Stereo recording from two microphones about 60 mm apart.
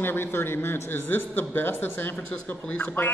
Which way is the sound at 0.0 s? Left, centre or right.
Left.